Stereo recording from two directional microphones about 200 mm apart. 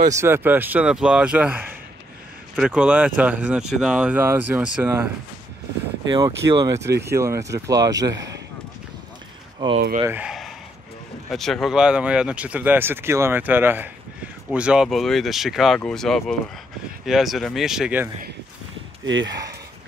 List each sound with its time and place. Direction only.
0.1 s speech: 10° right (ahead or behind)
6.0 s speech: 20° right (ahead or behind)
9.6 s speech: 20° right (ahead or behind)
9.9 s speech: 10° right (ahead or behind)